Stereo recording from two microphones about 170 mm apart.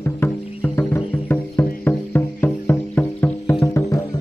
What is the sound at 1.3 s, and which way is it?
Music, 10° left (ahead or behind).